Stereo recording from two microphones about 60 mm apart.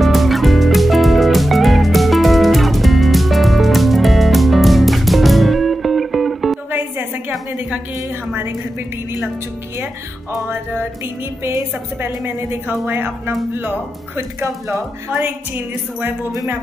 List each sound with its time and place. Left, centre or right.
0.0 s music: centre
6.7 s a sound: right
10.5 s speech: right
12.0 s speech: right
15.2 s speech: right